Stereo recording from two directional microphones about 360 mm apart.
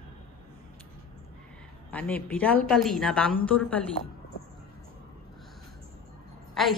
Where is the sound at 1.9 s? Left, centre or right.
Centre.